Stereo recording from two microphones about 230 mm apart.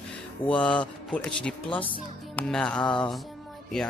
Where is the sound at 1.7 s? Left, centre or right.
Left.